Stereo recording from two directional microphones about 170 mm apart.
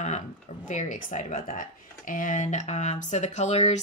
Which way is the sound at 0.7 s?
45° left (ahead or behind).